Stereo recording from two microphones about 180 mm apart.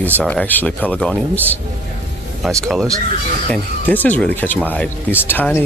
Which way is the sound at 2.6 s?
Centre (ahead or behind).